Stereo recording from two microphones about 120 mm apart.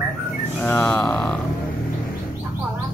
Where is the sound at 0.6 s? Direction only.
20° left (ahead or behind).